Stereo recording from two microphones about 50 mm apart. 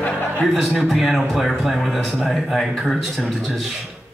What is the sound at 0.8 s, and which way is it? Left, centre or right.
Speech, centre.